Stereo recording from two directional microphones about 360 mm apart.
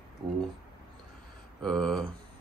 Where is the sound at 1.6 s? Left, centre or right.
Centre.